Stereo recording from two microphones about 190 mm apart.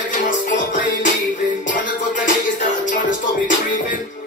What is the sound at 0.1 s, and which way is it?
Music, 45° left (ahead or behind).